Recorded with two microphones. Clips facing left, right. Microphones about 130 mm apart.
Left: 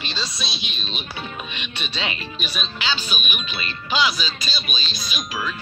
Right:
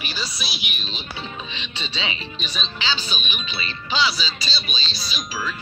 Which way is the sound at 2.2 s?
10° left (ahead or behind).